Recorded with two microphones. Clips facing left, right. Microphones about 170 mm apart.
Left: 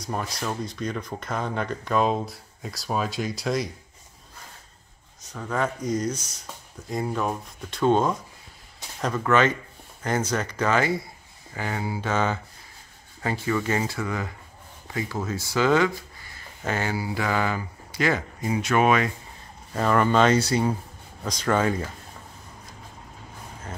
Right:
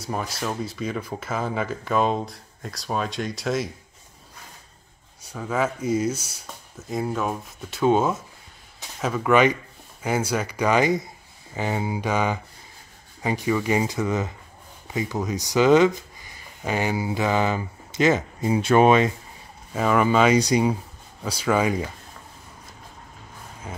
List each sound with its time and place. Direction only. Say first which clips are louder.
0.0 s speech: right 1 dB; 5° right (ahead or behind)
5.2 s speech: right 2 dB; 10° right (ahead or behind); by 19.1 s 25° right (ahead or behind)
19.7 s speech: right 1 dB; 5° right (ahead or behind)